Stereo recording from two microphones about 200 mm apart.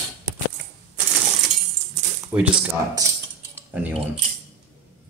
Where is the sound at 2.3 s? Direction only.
5° right (ahead or behind).